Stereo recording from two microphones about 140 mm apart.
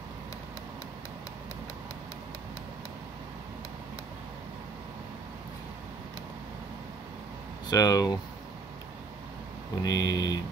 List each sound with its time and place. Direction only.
7.7 s speech: 25° left (ahead or behind)
9.8 s speech: 25° left (ahead or behind)